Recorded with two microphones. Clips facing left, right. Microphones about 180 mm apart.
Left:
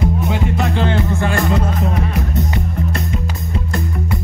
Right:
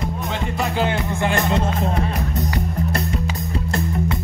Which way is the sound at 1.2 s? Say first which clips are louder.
Left 2 dB; 25° right (ahead or behind).